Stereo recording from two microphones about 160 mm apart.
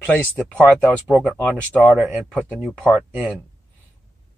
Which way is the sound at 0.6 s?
10° right (ahead or behind).